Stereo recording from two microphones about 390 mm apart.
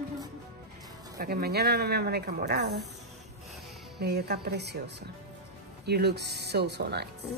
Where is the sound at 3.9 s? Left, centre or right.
Right.